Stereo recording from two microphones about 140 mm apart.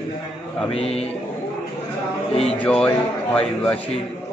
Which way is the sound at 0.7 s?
45° left (ahead or behind).